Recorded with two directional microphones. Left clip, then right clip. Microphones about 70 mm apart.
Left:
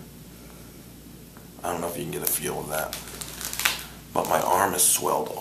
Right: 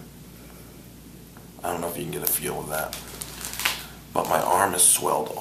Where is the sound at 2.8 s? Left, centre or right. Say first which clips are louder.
Even; centre.